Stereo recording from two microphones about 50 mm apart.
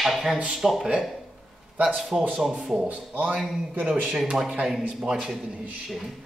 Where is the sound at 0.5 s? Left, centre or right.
Centre.